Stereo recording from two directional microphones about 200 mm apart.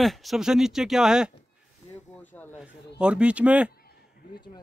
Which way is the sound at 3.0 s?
5° right (ahead or behind).